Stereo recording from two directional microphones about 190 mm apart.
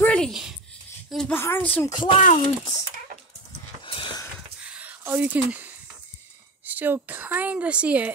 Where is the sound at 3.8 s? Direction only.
25° left (ahead or behind).